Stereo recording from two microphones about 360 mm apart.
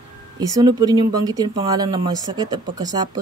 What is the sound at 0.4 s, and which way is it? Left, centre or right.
Speech, centre.